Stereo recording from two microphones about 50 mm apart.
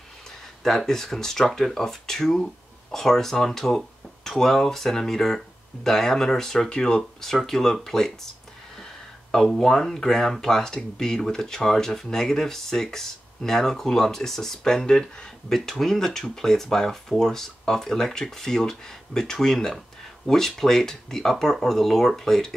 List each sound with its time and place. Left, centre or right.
0.7 s speech: centre
9.3 s speech: centre